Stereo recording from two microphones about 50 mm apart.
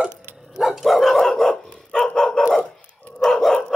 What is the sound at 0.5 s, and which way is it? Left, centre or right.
Dog, centre.